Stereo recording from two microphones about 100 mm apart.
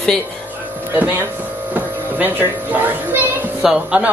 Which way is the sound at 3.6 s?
10° right (ahead or behind).